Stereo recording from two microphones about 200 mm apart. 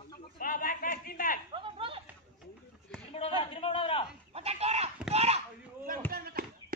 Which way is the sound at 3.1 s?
30° left (ahead or behind).